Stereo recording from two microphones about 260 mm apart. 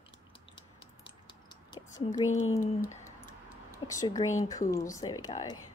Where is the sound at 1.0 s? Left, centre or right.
Centre.